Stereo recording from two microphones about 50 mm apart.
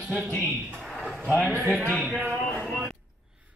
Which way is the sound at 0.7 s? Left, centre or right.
Centre.